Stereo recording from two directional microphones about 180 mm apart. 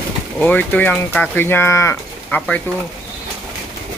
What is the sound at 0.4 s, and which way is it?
Speech, 10° left (ahead or behind).